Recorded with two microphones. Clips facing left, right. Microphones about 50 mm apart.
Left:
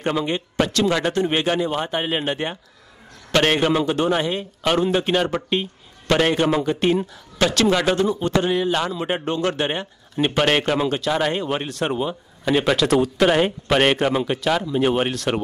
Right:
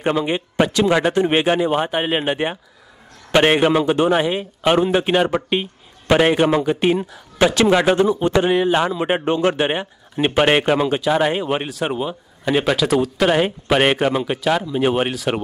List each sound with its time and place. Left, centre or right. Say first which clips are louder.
0.0 s a man's voice: right 3 dB; centre